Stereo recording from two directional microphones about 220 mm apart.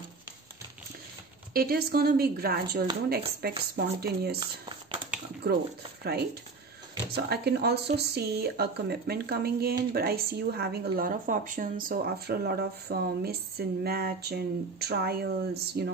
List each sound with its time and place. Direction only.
1.5 s a woman's voice: 45° right (ahead or behind)
5.4 s a woman's voice: 45° right (ahead or behind)
7.1 s a woman's voice: 45° right (ahead or behind)